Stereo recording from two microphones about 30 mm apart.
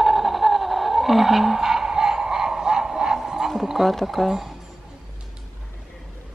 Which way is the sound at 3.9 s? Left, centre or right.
Centre.